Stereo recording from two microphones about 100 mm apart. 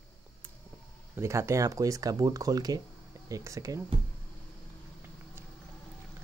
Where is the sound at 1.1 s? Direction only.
30° right (ahead or behind).